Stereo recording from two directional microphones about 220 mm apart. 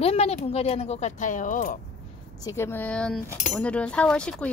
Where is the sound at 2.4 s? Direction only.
10° left (ahead or behind).